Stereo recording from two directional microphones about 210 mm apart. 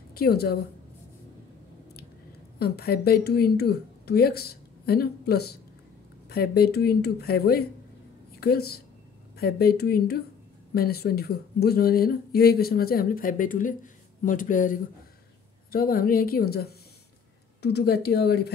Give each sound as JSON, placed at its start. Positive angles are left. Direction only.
{"t": 0.1, "sound": "a woman's voice", "side_deg": 45}
{"t": 2.6, "sound": "speech", "side_deg": 50}